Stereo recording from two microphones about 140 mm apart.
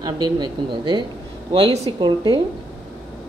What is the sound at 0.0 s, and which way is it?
Speech, 30° right (ahead or behind).